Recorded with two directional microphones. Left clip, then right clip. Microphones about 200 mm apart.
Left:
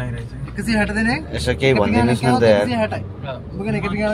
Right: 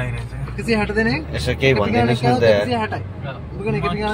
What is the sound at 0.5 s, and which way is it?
Speech, 50° left (ahead or behind).